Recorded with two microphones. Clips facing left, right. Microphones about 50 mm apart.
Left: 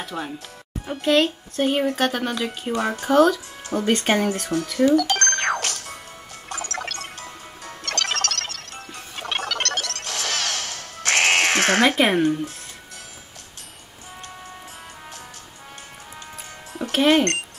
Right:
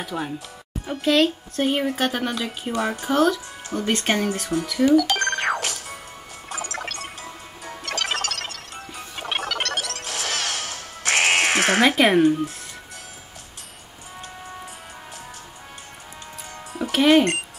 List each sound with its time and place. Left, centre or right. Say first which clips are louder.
0.0 s speech: right 2 dB; centre
6.5 s music: left 1 dB; centre
16.7 s music: right 2 dB; centre